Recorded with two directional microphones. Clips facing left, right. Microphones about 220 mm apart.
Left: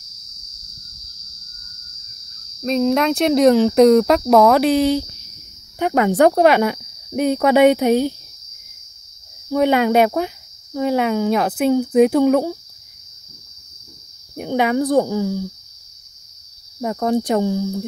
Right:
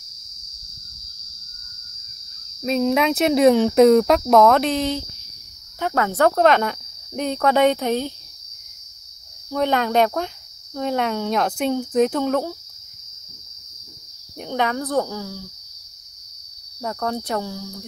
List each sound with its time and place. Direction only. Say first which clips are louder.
2.6 s speech: left 2 dB; centre (ahead or behind)
9.5 s speech: left 5 dB; 10° left (ahead or behind)
14.3 s speech: left 6 dB; 10° left (ahead or behind)
16.8 s cricket: left 7 dB; 15° left (ahead or behind)